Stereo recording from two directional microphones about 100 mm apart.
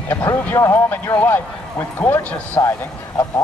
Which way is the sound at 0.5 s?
45° left (ahead or behind).